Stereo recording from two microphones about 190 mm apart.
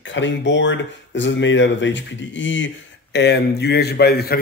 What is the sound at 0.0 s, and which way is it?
Speech, 75° left (ahead or behind).